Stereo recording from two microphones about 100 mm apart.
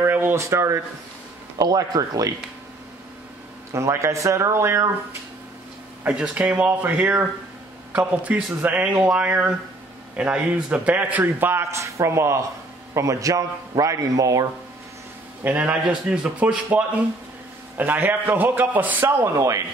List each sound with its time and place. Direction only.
0.0 s speech: 20° right (ahead or behind)
1.6 s a man's voice: 40° right (ahead or behind)
3.7 s a man's voice: 30° right (ahead or behind)
6.0 s a man's voice: 10° right (ahead or behind); by 14.5 s 35° right (ahead or behind)
15.4 s a man's voice: 15° right (ahead or behind); by 19.6 s 30° right (ahead or behind)